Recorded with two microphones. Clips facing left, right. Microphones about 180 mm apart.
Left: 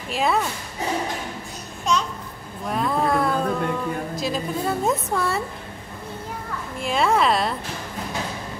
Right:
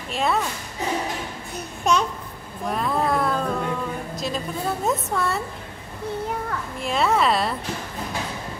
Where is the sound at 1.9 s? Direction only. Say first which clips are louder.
Right 2 dB; 60° right (ahead or behind).